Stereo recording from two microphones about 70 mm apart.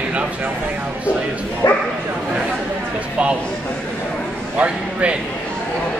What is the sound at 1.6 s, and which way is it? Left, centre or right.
Speech, left.